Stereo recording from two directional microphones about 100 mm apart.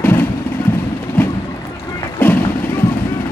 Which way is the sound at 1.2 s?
20° left (ahead or behind).